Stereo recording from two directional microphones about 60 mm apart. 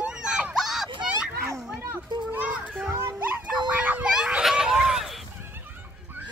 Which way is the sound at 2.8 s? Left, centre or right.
Right.